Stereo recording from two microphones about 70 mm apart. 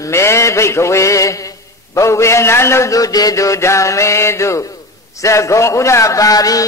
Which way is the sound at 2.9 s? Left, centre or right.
Left.